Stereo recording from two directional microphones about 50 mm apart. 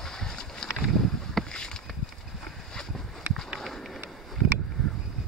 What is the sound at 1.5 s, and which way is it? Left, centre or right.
Boat, centre.